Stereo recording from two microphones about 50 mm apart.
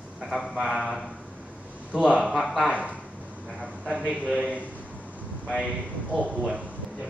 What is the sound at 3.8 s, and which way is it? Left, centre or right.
Speech, centre.